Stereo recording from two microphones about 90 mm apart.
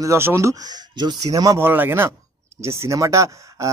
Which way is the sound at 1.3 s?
40° right (ahead or behind).